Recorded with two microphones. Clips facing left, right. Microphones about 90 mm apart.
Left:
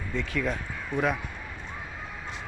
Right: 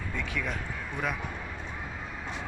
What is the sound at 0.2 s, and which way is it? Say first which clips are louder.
Speech: left 4 dB; 5° right (ahead or behind).